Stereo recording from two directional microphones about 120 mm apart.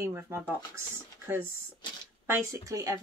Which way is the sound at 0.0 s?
20° right (ahead or behind).